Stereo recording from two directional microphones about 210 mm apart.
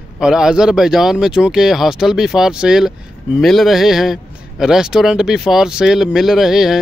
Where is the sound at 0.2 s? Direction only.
5° right (ahead or behind).